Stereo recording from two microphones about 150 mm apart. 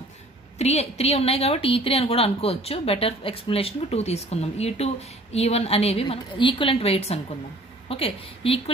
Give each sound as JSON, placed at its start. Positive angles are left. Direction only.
{"t": 0.6, "sound": "speech", "side_deg": 45}